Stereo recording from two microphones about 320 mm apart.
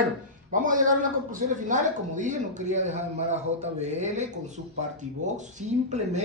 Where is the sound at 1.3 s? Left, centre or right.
Right.